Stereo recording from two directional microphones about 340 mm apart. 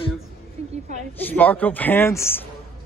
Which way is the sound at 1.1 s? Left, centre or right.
Centre.